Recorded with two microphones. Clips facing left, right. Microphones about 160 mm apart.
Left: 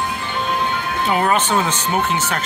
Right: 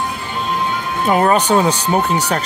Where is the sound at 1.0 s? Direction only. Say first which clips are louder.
Right 5 dB; 40° right (ahead or behind).